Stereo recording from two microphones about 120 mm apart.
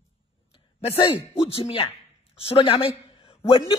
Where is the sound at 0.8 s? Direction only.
55° left (ahead or behind).